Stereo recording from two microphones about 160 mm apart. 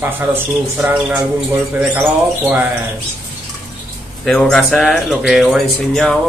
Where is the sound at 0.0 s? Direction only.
15° right (ahead or behind).